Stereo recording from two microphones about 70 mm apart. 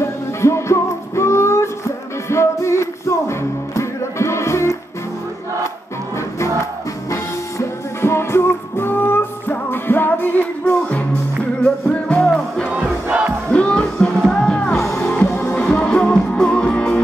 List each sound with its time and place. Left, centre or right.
0.0 s music: left
6.6 s music: left; by 12.6 s centre
12.7 s crowd: centre
13.5 s music: centre
15.2 s music: left
15.5 s music: centre